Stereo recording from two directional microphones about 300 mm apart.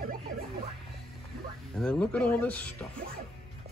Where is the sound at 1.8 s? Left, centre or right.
Centre.